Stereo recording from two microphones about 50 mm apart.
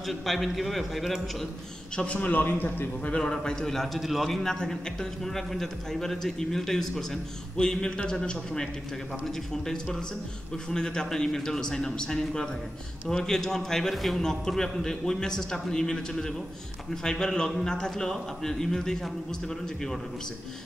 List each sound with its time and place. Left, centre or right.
0.0 s a man's voice: centre
2.0 s a man's voice: left
2.3 s a man's voice: left
3.2 s a man's voice: centre